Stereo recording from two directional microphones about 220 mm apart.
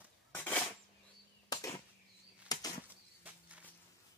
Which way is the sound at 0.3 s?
10° left (ahead or behind).